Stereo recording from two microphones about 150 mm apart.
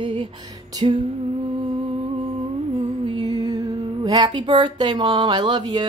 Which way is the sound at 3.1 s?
30° right (ahead or behind).